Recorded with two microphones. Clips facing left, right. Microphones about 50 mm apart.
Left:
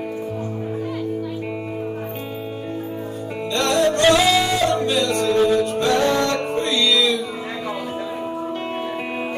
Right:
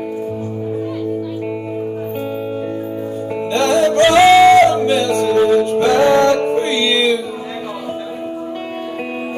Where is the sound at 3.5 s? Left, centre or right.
Right.